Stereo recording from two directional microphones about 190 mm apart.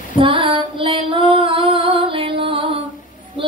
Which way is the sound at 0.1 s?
25° right (ahead or behind).